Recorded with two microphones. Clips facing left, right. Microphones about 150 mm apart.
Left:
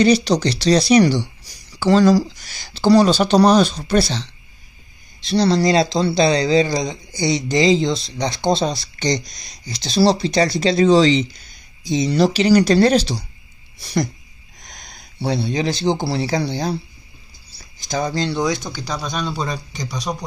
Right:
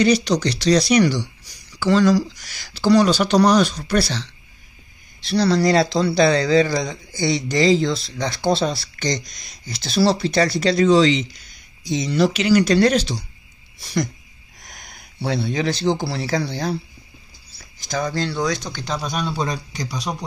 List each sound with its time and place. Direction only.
0.0 s speech: 30° left (ahead or behind)
5.3 s speech: 25° left (ahead or behind)
15.2 s speech: 30° left (ahead or behind)
17.8 s speech: 20° left (ahead or behind); by 19.0 s 5° left (ahead or behind)
19.0 s a man's voice: 5° right (ahead or behind)